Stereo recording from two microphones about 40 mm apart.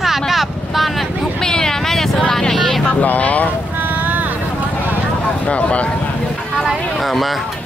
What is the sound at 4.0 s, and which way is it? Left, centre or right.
Vehicle, right.